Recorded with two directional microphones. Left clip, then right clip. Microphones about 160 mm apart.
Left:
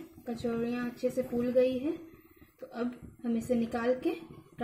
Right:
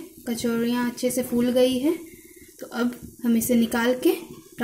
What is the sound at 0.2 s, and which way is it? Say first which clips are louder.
Speech: right 8 dB; 45° right (ahead or behind).